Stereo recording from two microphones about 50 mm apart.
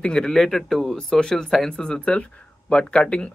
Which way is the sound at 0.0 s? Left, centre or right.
Centre.